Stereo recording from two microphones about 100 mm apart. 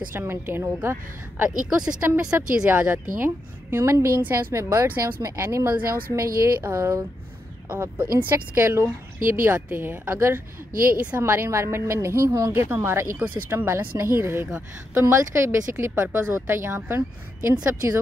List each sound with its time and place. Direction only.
0.1 s a woman's voice: 20° right (ahead or behind)
1.8 s a woman's voice: 10° right (ahead or behind); by 7.0 s 30° right (ahead or behind)
7.6 s a woman's voice: 15° right (ahead or behind)
11.0 s a woman's voice: 15° right (ahead or behind)
11.2 s a woman's voice: 25° right (ahead or behind)